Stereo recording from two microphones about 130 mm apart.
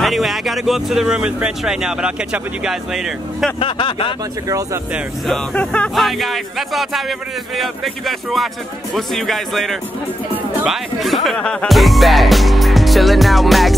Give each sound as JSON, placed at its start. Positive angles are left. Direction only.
{"t": 0.0, "sound": "speech", "side_deg": 0}
{"t": 3.5, "sound": "a sound", "side_deg": 45}
{"t": 4.9, "sound": "speech", "side_deg": 0}